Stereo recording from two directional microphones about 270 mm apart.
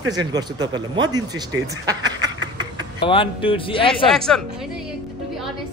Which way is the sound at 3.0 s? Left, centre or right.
Centre.